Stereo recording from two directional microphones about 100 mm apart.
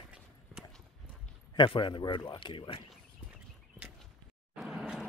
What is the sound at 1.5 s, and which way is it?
A man's voice, 50° left (ahead or behind).